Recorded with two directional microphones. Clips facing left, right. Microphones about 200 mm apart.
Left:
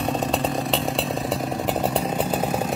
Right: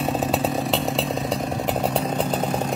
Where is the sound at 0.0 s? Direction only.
5° right (ahead or behind).